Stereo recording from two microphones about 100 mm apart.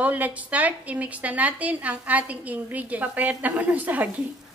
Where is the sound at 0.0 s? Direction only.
15° right (ahead or behind).